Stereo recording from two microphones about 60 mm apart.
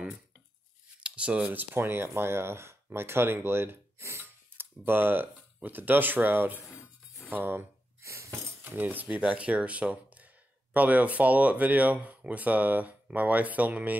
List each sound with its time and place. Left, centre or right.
1.0 s speech: centre
1.5 s speech: right
4.2 s speech: right
8.0 s a sound: right
8.6 s speech: right